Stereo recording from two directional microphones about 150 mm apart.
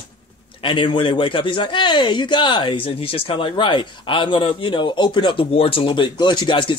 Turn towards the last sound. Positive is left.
turn(degrees=35)  # may be behind; listen again after turning